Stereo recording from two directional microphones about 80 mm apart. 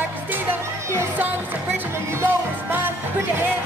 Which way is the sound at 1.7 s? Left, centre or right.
Right.